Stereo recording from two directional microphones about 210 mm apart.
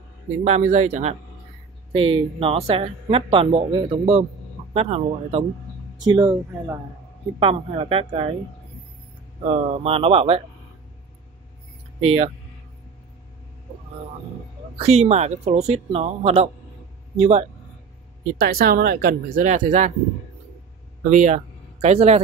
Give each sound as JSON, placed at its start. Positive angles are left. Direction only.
{"t": 0.4, "sound": "speech", "side_deg": -35}
{"t": 9.4, "sound": "speech", "side_deg": -30}
{"t": 12.0, "sound": "speech", "side_deg": -30}
{"t": 14.8, "sound": "speech", "side_deg": -30}
{"t": 18.4, "sound": "speech", "side_deg": -45}
{"t": 21.1, "sound": "speech", "side_deg": -35}